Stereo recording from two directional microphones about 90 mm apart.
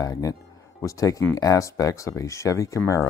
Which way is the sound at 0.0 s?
40° left (ahead or behind).